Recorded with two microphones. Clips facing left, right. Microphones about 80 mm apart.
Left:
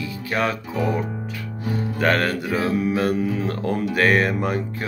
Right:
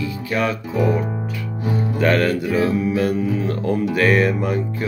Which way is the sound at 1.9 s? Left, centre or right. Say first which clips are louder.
Right 3 dB; left.